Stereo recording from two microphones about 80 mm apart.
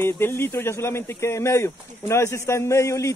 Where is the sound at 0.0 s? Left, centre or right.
Left.